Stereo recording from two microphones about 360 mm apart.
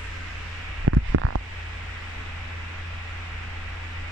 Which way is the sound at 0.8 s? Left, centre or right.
Right.